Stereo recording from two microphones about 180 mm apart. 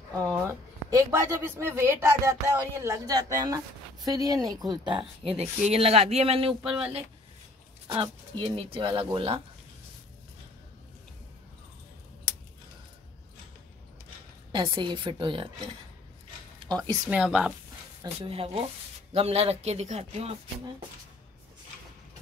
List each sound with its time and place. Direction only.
0.5 s speech: 15° right (ahead or behind)
14.5 s speech: 25° right (ahead or behind)
17.1 s speech: 5° right (ahead or behind)
18.0 s speech: 35° right (ahead or behind)